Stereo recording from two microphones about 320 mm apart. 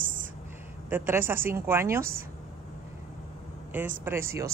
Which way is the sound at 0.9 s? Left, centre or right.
Centre.